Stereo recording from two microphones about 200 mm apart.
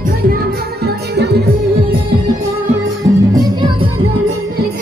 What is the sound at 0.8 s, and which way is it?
Music, 55° right (ahead or behind).